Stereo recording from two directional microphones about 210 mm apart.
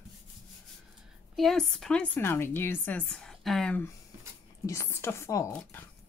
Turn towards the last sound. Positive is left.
turn(degrees=10)  # may be behind; listen again after turning